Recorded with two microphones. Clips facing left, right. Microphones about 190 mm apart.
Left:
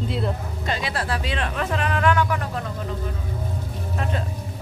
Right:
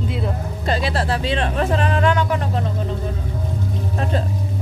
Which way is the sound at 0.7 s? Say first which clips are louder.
Right 5 dB; 30° right (ahead or behind).